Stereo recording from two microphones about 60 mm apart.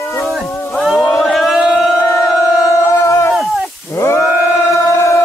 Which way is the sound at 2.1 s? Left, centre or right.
Left.